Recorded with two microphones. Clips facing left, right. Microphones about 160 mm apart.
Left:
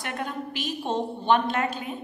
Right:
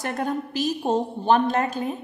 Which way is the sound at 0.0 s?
40° right (ahead or behind).